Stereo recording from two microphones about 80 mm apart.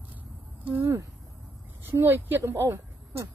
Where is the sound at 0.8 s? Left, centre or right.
Right.